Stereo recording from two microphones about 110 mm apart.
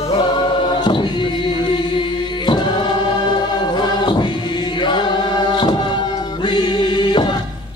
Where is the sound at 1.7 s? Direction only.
45° left (ahead or behind).